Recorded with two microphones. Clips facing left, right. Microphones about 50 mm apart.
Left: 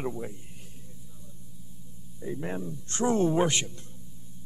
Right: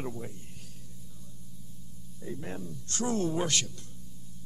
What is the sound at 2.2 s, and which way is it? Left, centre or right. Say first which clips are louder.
A man's voice: left 5 dB; centre.